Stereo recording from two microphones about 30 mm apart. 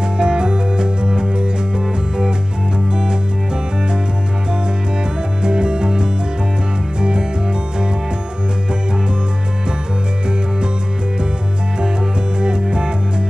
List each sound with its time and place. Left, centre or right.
0.0 s music: right
5.4 s music: right
12.4 s music: right